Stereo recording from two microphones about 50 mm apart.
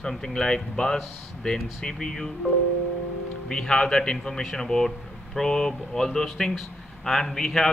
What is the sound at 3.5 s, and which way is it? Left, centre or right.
Speech, centre.